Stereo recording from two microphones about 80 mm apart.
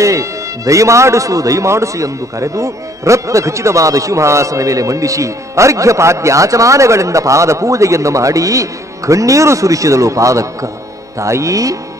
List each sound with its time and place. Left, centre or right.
0.0 s speech: right